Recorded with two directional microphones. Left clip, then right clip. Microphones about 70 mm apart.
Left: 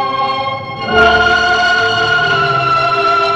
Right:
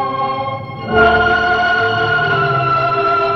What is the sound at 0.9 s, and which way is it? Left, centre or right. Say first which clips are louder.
Music: left 2 dB; left.